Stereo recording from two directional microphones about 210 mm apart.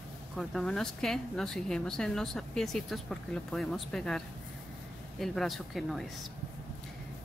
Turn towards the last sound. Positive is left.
turn(degrees=0)  # may be behind; listen again after turning